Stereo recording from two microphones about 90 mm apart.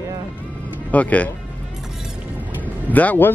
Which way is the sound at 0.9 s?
15° left (ahead or behind).